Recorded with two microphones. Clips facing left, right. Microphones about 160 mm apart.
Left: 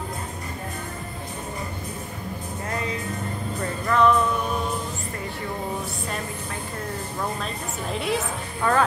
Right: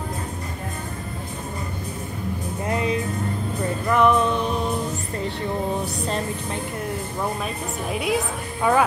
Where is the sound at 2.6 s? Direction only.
20° right (ahead or behind).